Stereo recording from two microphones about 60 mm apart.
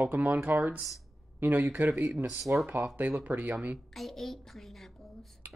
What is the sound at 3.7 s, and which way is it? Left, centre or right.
Speech, centre.